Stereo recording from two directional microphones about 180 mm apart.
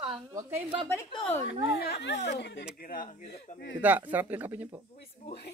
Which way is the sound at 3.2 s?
35° left (ahead or behind).